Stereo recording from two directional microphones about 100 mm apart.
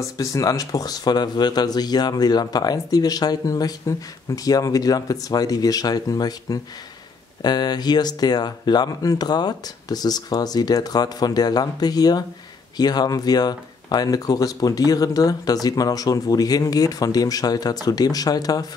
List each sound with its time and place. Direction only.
0.0 s speech: 35° left (ahead or behind)